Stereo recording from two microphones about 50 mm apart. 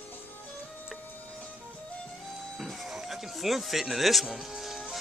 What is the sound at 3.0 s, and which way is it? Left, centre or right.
Music, centre.